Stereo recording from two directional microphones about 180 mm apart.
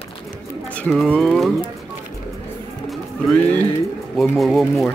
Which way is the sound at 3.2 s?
10° left (ahead or behind).